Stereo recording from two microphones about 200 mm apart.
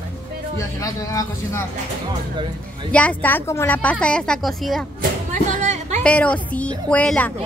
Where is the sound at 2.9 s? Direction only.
10° left (ahead or behind).